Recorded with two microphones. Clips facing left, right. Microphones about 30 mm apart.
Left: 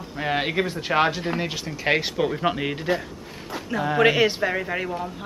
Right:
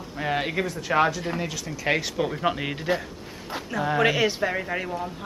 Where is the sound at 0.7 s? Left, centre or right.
Left.